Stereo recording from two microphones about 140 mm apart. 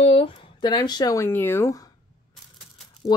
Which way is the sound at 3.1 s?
30° left (ahead or behind).